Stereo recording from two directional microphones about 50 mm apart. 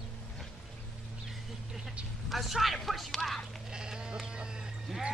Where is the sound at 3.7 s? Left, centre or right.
Centre.